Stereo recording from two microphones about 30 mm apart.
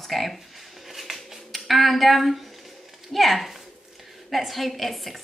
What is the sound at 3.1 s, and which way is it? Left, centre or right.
Speech, centre.